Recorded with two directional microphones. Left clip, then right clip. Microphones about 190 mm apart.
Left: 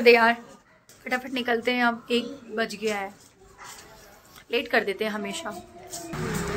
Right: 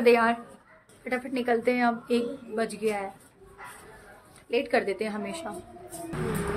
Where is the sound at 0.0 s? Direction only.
5° right (ahead or behind).